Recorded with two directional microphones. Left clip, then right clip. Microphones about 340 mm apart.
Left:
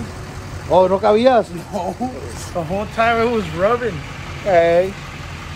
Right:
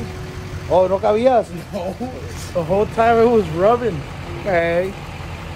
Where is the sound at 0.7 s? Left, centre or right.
Left.